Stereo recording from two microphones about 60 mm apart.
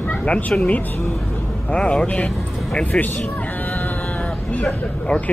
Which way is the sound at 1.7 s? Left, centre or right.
Centre.